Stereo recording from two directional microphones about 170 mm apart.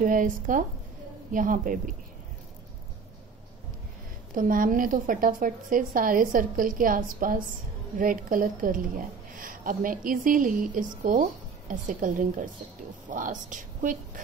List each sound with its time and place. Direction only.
0.0 s a woman's voice: 50° right (ahead or behind)
4.4 s a woman's voice: 55° right (ahead or behind)